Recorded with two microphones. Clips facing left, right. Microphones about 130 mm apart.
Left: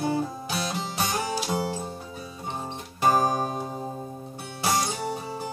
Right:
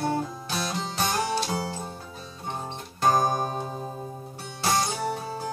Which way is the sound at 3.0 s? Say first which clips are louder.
Even; 5° left (ahead or behind).